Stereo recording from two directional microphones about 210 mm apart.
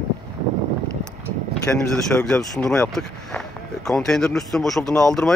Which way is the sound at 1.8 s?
5° left (ahead or behind).